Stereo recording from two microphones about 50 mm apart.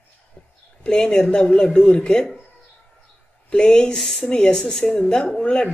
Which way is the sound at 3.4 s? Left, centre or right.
Centre.